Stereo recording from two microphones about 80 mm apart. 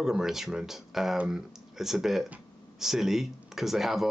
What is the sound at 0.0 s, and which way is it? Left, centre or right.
Speech, centre.